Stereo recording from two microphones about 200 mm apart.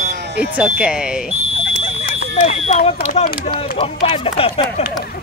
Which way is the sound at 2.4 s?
30° left (ahead or behind).